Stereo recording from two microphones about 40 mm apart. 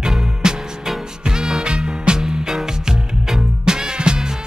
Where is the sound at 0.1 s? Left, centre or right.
Centre.